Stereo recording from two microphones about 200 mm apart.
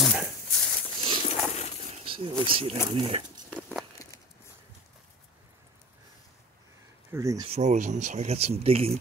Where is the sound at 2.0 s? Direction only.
25° right (ahead or behind).